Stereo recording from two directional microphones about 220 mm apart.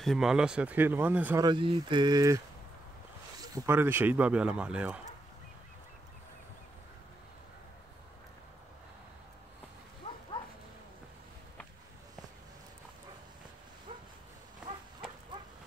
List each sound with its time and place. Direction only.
0.0 s speech: centre (ahead or behind)
1.4 s speech: 20° right (ahead or behind)
3.5 s speech: 10° right (ahead or behind)
14.6 s a sound: 5° right (ahead or behind)